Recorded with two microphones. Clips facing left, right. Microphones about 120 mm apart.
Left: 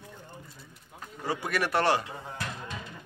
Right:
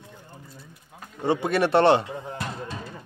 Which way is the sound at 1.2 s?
25° right (ahead or behind).